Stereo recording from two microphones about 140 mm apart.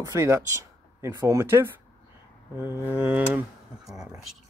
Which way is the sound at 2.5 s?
15° right (ahead or behind).